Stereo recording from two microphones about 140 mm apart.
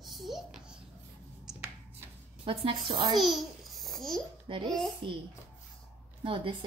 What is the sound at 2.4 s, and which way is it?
Speech, 40° right (ahead or behind).